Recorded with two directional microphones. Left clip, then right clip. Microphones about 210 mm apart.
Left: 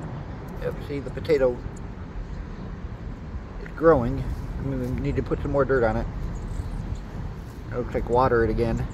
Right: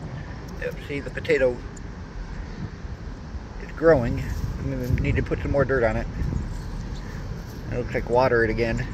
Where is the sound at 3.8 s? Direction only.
10° left (ahead or behind).